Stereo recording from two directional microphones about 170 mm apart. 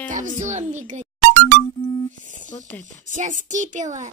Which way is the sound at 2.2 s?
50° right (ahead or behind).